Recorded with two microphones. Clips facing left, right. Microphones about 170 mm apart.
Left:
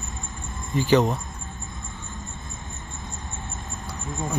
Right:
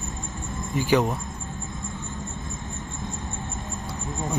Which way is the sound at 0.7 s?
10° right (ahead or behind).